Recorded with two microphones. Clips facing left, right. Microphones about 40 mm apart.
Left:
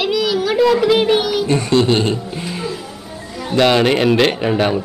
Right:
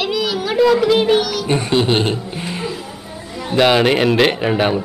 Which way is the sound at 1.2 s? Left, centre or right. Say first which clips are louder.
Left 2 dB; centre.